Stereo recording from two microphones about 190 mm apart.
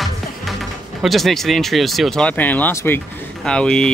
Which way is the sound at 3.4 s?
5° left (ahead or behind).